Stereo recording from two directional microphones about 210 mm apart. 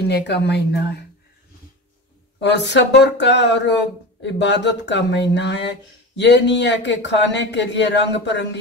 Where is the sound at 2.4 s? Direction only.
55° left (ahead or behind).